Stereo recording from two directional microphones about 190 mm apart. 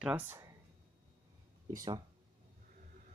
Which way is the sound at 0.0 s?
10° right (ahead or behind).